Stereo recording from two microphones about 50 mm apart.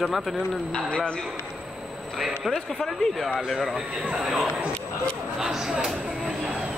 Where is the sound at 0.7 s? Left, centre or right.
Left.